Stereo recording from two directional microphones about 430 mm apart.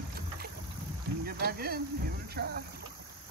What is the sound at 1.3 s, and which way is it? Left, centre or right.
Speech, right.